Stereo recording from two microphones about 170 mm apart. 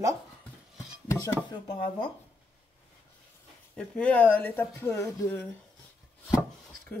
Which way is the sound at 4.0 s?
10° left (ahead or behind).